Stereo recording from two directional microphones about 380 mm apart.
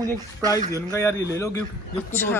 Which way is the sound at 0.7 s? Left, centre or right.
Centre.